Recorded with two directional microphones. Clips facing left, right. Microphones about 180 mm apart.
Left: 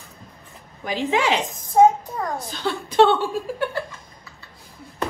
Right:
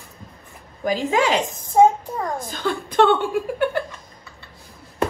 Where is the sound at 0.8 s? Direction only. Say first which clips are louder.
Right 2 dB; 45° right (ahead or behind).